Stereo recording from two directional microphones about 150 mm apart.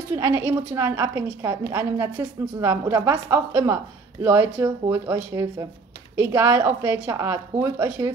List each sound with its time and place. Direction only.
0.1 s a woman's voice: 15° right (ahead or behind)